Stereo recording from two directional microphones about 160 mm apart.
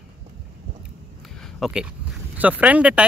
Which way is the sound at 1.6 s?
5° right (ahead or behind).